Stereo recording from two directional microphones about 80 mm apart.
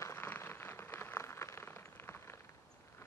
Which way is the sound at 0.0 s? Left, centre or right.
Left.